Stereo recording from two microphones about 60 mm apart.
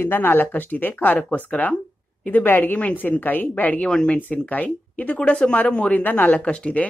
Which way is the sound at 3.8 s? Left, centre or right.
Centre.